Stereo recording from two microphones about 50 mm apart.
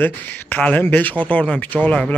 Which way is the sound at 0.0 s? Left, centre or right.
Left.